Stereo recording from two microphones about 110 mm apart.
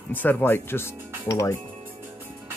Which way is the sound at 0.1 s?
15° left (ahead or behind).